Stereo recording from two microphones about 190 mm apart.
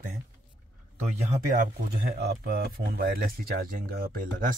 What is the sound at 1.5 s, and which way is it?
Speech, 50° right (ahead or behind).